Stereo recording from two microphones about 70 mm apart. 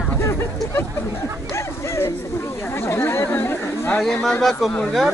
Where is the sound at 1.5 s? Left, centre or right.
Left.